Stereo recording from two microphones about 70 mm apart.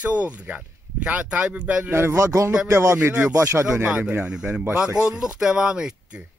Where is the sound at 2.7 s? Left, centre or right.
Right.